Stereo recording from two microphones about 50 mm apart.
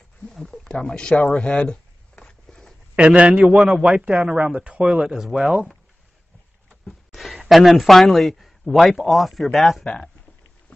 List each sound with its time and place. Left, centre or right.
0.3 s speech: centre
0.7 s a sound: centre
3.0 s speech: right
3.5 s speech: centre
6.7 s a sound: centre
7.3 s a man's voice: centre